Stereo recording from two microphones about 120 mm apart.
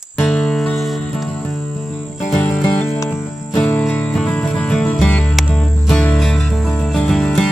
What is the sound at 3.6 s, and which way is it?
Music, 5° left (ahead or behind).